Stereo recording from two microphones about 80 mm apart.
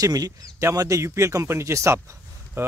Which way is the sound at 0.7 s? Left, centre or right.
Right.